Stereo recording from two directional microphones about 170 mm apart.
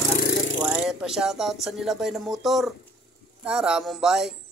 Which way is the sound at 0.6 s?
5° right (ahead or behind).